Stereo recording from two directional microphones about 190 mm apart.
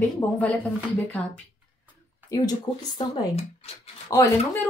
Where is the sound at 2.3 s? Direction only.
20° left (ahead or behind).